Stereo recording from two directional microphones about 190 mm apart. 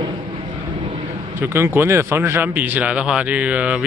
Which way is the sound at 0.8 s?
30° right (ahead or behind).